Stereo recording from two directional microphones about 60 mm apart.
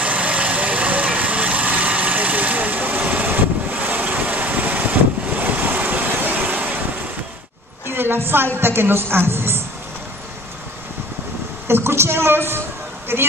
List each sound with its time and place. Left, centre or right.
0.0 s vehicle: right
7.9 s a woman's voice: right
11.6 s a woman's voice: right